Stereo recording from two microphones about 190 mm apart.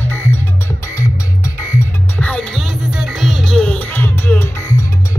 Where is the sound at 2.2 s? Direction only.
5° left (ahead or behind).